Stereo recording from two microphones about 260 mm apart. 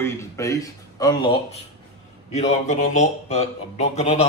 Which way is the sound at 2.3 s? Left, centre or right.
Left.